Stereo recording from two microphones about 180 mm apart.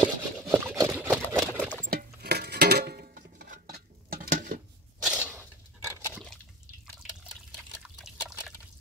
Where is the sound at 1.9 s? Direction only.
60° right (ahead or behind).